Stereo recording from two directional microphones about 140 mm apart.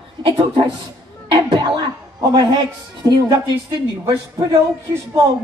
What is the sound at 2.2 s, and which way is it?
A woman's voice, 30° right (ahead or behind).